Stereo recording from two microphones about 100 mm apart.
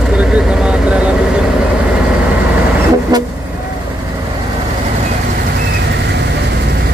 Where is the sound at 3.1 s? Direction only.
45° right (ahead or behind).